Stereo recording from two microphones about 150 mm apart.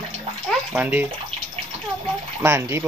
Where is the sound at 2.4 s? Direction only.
15° right (ahead or behind).